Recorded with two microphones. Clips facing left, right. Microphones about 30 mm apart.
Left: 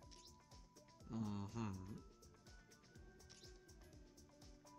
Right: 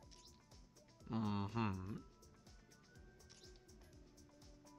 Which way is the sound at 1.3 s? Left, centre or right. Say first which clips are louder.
Right 7 dB; right.